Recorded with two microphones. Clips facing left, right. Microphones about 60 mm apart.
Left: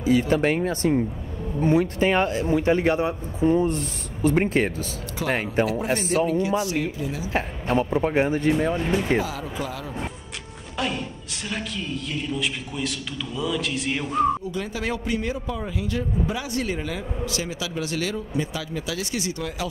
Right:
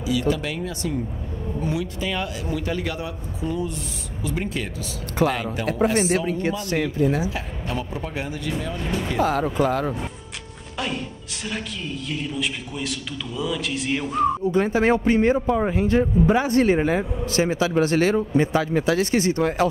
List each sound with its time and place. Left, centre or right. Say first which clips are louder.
0.0 s speech: left 3 dB; left
5.9 s a man's voice: right 1 dB; right
7.2 s speech: left 4 dB; left
8.8 s speech: left 2 dB; centre
9.2 s speech: right 9 dB; right
12.1 s a man's voice: right 1 dB; centre
14.5 s a man's voice: right 9 dB; right